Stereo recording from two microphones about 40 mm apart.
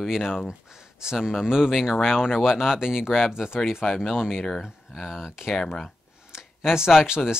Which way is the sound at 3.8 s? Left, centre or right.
Centre.